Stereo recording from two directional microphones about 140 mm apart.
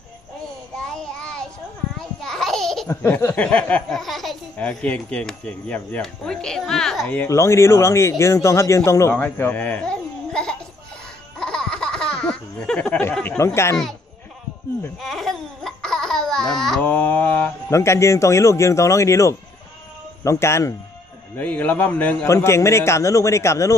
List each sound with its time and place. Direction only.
0.7 s child singing: 5° left (ahead or behind)
2.0 s babbling: 5° left (ahead or behind)
2.9 s speech: 15° left (ahead or behind)
7.2 s a man's voice: 20° left (ahead or behind)
11.3 s a sound: 5° left (ahead or behind)
13.4 s a man's voice: 20° left (ahead or behind)
15.0 s baby laughter: centre (ahead or behind)
16.8 s a man's voice: 10° left (ahead or behind)